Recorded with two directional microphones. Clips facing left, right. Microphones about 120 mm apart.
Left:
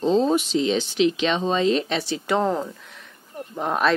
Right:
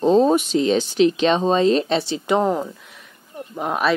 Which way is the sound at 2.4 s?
10° right (ahead or behind).